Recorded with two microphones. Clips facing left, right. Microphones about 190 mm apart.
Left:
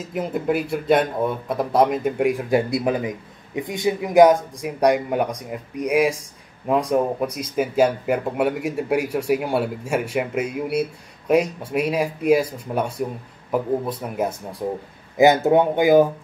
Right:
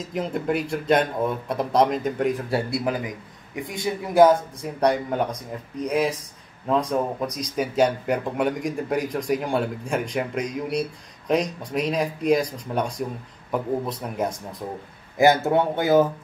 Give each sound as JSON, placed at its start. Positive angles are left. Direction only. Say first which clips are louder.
{"t": 0.0, "sound": "a man's voice", "louder": "left 2 dB", "side_deg": 5}
{"t": 15.1, "sound": "speech", "louder": "left 3 dB", "side_deg": 20}